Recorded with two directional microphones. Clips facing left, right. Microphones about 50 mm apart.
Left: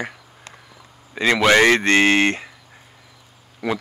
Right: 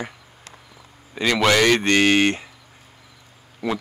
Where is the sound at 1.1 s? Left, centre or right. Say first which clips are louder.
Left 3 dB; centre.